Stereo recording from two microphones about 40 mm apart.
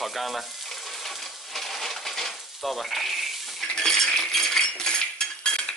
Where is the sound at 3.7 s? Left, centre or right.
Centre.